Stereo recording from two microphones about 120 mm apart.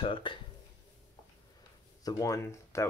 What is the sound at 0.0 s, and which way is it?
Speech, 45° left (ahead or behind).